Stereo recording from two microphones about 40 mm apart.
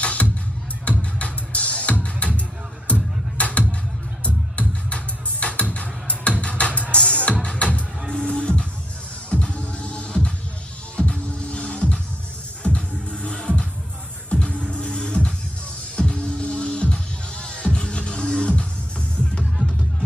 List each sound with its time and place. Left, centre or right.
0.0 s music: left